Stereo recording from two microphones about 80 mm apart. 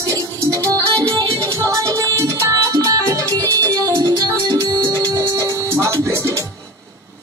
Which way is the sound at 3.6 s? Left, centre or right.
Right.